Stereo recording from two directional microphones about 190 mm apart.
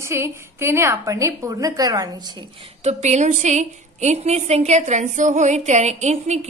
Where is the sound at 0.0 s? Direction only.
15° right (ahead or behind).